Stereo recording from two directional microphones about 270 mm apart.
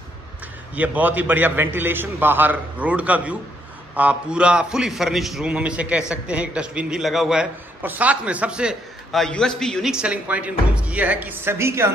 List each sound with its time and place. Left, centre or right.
0.7 s a man's voice: centre